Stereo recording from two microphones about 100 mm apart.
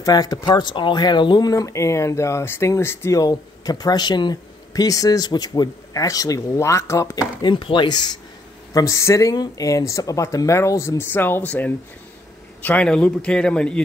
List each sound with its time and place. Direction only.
0.0 s speech: 35° left (ahead or behind)
1.5 s speech: 35° left (ahead or behind)
7.4 s speech: 55° left (ahead or behind)
8.7 s a man's voice: 30° left (ahead or behind); by 13.8 s 10° left (ahead or behind)